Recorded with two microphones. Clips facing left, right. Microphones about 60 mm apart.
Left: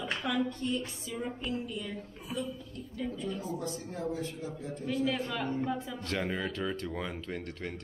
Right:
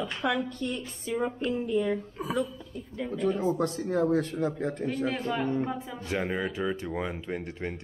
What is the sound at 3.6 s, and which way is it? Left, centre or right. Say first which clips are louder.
A man's voice: right 10 dB; right.